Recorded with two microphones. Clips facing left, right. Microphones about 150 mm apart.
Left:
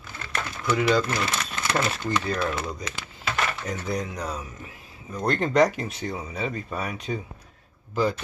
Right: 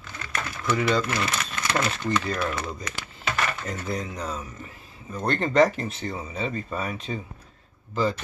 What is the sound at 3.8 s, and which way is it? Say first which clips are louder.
Speech: left 1 dB; centre (ahead or behind).